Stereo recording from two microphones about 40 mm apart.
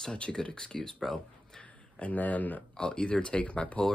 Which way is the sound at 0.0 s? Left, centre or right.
Centre.